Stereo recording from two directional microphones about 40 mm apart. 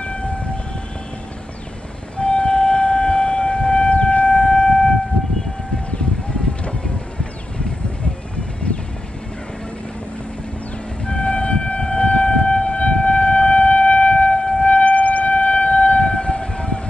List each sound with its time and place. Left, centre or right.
0.0 s train: left
2.1 s wind instrument: left
5.9 s music: left
11.1 s siren: left
14.7 s siren: left